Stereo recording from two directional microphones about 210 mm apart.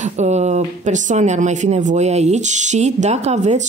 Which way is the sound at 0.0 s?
35° right (ahead or behind).